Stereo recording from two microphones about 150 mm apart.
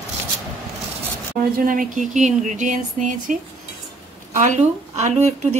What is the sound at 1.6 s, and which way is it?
Speech, 65° right (ahead or behind).